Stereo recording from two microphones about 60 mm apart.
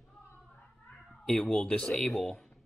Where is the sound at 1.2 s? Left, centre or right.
Centre.